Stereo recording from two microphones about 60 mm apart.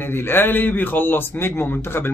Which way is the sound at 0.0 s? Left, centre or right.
Left.